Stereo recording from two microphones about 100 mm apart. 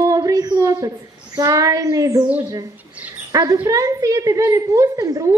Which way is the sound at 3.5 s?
35° right (ahead or behind).